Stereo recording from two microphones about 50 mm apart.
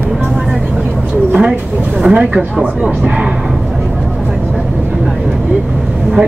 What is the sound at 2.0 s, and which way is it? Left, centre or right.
A man's voice, right.